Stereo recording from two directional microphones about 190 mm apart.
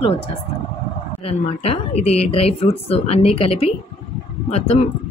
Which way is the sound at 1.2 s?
30° left (ahead or behind).